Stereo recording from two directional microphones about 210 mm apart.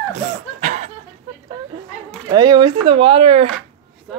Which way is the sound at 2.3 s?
20° right (ahead or behind).